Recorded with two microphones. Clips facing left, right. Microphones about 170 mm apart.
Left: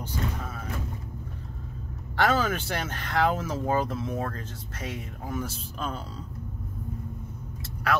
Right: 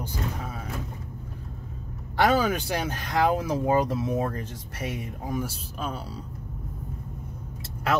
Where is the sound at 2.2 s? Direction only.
15° right (ahead or behind).